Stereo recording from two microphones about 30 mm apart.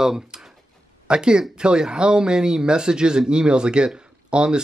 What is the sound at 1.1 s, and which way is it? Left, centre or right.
Speech, right.